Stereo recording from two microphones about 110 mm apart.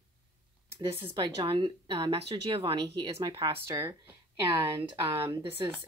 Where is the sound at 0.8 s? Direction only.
50° right (ahead or behind).